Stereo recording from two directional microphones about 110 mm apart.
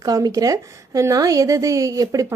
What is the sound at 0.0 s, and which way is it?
A woman's voice, 35° right (ahead or behind).